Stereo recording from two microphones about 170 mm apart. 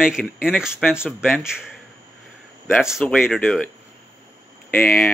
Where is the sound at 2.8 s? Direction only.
Centre (ahead or behind).